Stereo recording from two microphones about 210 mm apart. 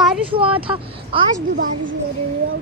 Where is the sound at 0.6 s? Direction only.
25° right (ahead or behind).